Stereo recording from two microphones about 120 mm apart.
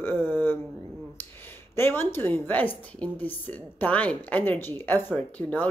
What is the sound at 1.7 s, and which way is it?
A woman's voice, 20° left (ahead or behind).